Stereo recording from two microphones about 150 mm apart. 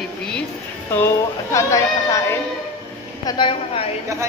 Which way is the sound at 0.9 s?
15° left (ahead or behind).